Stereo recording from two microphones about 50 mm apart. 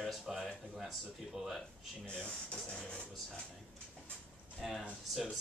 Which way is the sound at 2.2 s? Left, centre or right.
Centre.